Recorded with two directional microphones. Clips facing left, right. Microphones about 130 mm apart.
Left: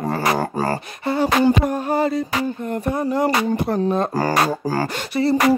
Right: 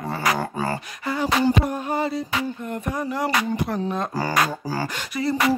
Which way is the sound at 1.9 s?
40° left (ahead or behind).